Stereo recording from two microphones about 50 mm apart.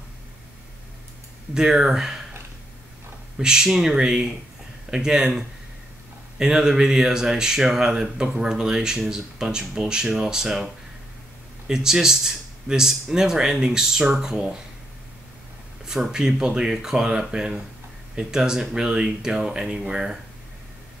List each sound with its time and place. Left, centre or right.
1.5 s speech: centre
3.3 s speech: centre
6.3 s speech: centre
15.8 s speech: centre